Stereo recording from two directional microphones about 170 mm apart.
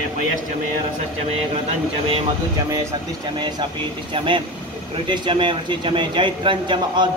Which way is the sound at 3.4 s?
25° right (ahead or behind).